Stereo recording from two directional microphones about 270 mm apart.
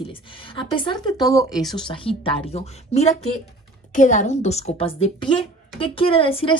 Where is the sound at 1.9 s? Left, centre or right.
Centre.